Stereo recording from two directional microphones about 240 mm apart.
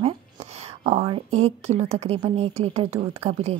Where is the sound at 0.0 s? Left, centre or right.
Right.